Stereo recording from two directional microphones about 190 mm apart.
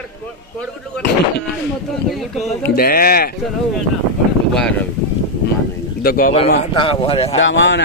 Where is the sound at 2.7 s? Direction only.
50° left (ahead or behind).